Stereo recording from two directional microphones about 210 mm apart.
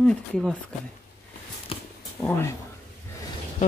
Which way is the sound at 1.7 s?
25° left (ahead or behind).